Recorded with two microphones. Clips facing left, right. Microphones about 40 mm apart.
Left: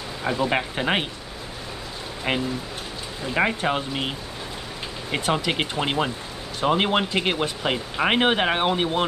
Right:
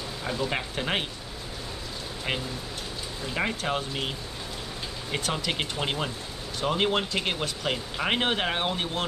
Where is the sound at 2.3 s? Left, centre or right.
Centre.